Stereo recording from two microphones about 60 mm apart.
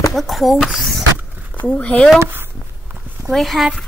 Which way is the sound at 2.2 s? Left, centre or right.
Right.